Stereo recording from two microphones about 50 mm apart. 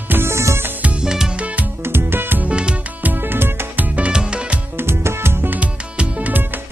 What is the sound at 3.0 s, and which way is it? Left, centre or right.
Music, right.